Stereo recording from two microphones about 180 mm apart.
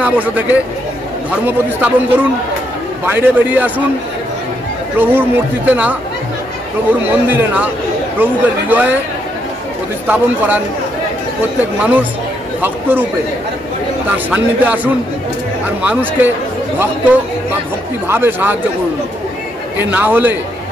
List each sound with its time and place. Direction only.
0.0 s speech: 10° right (ahead or behind)
3.1 s speech: 10° right (ahead or behind)
4.9 s speech: 10° right (ahead or behind)
10.0 s speech: 10° right (ahead or behind)
11.8 s speech: 10° right (ahead or behind)
14.0 s speech: 10° right (ahead or behind)
19.8 s speech: 10° right (ahead or behind)